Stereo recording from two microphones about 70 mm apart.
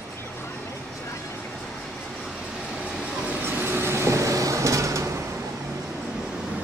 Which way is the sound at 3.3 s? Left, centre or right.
Right.